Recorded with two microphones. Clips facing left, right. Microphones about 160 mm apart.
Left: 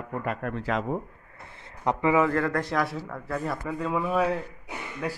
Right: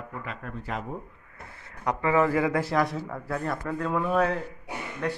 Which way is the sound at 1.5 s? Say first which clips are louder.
Left 2 dB; 25° left (ahead or behind).